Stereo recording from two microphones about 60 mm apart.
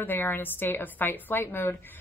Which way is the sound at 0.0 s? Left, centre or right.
Left.